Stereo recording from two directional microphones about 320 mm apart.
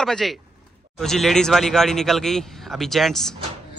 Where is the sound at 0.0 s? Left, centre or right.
Centre.